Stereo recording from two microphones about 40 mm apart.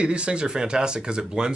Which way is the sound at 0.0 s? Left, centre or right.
Right.